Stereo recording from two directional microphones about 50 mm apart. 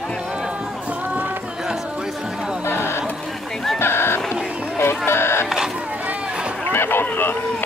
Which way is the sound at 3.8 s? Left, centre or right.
Left.